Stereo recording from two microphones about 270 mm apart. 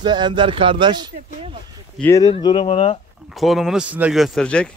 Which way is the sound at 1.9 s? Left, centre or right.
Centre.